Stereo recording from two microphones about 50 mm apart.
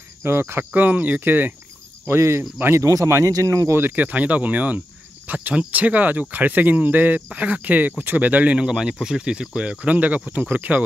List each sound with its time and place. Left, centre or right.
0.2 s speech: right
0.7 s speech: right
2.0 s speech: right
3.7 s speech: right
8.5 s speech: centre; by 10.8 s right